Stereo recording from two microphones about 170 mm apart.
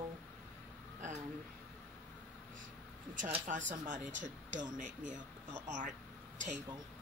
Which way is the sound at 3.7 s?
45° right (ahead or behind).